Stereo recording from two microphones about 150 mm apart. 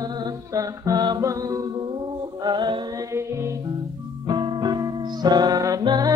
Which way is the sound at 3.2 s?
20° right (ahead or behind).